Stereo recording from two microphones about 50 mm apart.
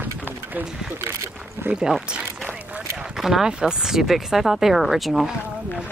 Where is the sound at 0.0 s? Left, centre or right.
Right.